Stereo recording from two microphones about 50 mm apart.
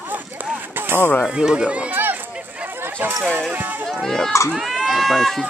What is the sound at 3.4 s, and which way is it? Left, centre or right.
Speech, right.